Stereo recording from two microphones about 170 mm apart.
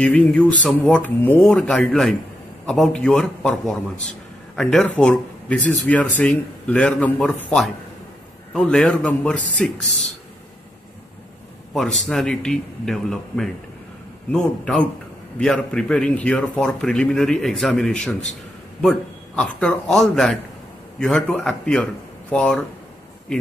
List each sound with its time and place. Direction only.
0.0 s a man's voice: 5° left (ahead or behind)
11.7 s a man's voice: centre (ahead or behind)